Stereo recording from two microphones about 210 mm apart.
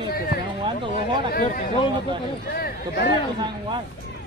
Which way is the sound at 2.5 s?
45° left (ahead or behind).